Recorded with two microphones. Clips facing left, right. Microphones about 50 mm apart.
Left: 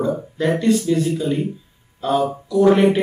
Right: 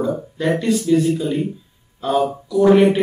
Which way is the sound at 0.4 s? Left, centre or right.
Centre.